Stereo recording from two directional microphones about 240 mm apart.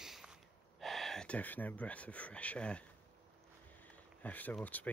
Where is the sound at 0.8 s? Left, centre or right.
Centre.